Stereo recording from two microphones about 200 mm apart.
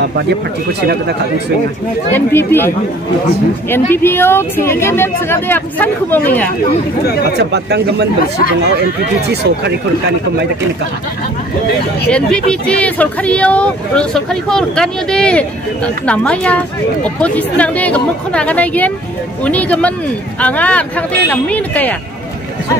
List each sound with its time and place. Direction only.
2.1 s a woman's voice: 10° left (ahead or behind)
3.7 s a woman's voice: 10° left (ahead or behind)
7.3 s speech: 55° right (ahead or behind)
9.3 s speech: 55° right (ahead or behind)
12.1 s a woman's voice: 5° left (ahead or behind)